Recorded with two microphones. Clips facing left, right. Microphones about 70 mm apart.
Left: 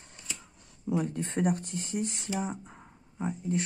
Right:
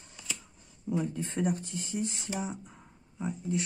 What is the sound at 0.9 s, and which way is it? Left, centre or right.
Speech, left.